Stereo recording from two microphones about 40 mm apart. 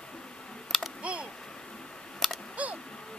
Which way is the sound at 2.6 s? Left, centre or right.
Right.